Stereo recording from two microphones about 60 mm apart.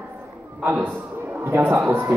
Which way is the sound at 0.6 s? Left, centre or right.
Right.